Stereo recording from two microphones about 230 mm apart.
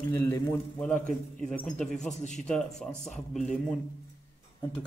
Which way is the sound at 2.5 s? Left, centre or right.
Centre.